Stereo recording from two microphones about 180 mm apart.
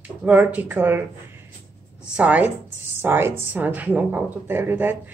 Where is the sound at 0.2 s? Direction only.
10° right (ahead or behind).